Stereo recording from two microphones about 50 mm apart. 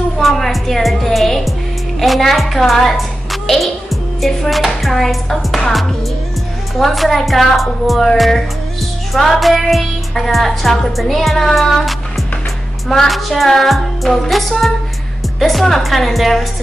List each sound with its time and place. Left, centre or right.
0.2 s music: centre
2.0 s a woman's voice: centre
4.8 s music: centre
9.1 s music: centre